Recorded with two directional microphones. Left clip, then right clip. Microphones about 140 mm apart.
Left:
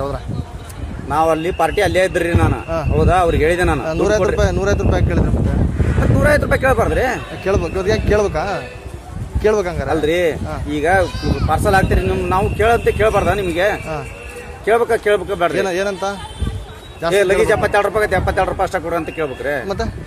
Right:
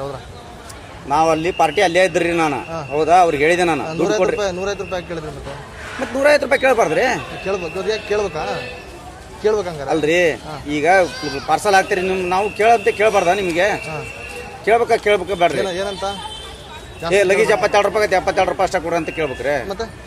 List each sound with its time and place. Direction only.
1.1 s speech: 25° left (ahead or behind)
3.8 s a man's voice: 90° left
6.2 s speech: 20° left (ahead or behind)
7.4 s a man's voice: 90° left
9.9 s speech: 20° left (ahead or behind)
15.5 s a man's voice: 90° left
17.1 s speech: 20° left (ahead or behind)